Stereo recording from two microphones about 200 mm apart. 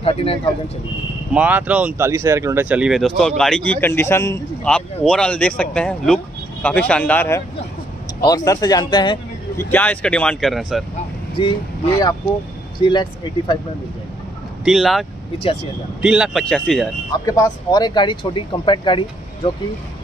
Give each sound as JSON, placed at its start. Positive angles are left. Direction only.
{"t": 0.0, "sound": "speech", "side_deg": 30}
{"t": 1.3, "sound": "a man's voice", "side_deg": -5}
{"t": 8.5, "sound": "speech", "side_deg": 20}
{"t": 9.6, "sound": "speech", "side_deg": 10}
{"t": 11.3, "sound": "speech", "side_deg": 20}
{"t": 14.6, "sound": "speech", "side_deg": 0}
{"t": 17.3, "sound": "speech", "side_deg": 20}